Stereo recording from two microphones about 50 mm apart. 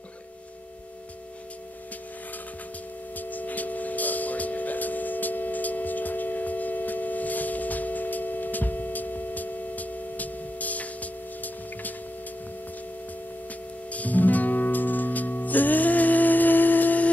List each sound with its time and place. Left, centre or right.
3.2 s tubular bells: left
13.8 s music: left